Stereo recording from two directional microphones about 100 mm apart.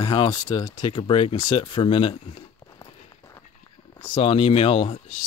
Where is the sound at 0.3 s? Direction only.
35° left (ahead or behind); by 1.3 s 60° left (ahead or behind).